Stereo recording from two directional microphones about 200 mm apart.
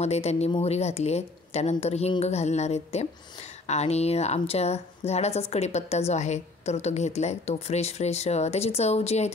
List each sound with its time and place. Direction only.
0.0 s speech: 35° left (ahead or behind)